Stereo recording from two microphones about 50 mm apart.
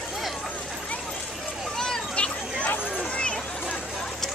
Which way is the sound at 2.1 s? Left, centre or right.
Left.